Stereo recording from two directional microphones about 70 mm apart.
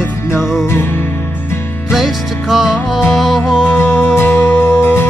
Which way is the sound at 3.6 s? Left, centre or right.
Left.